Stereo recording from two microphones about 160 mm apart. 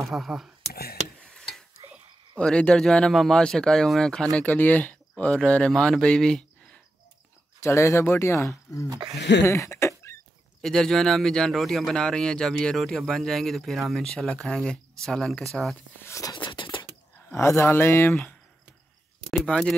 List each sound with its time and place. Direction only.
0.0 s speech: centre (ahead or behind)
1.3 s tick-tock: 5° left (ahead or behind)
2.3 s speech: 5° left (ahead or behind)
7.6 s speech: 15° left (ahead or behind)
8.8 s speech: 20° right (ahead or behind)
9.4 s a sound: 15° left (ahead or behind)
10.6 s speech: centre (ahead or behind)
16.0 s a sound: 20° left (ahead or behind)
17.3 s speech: 15° left (ahead or behind)
19.3 s speech: 5° left (ahead or behind)